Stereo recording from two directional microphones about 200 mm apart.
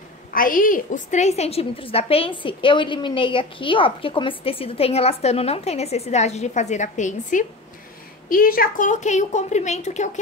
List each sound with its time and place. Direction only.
0.3 s a woman's voice: 45° left (ahead or behind)